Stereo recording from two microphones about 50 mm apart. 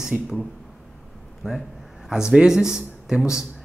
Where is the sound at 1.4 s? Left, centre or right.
Centre.